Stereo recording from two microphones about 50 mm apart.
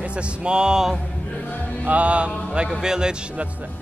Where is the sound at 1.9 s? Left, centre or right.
Right.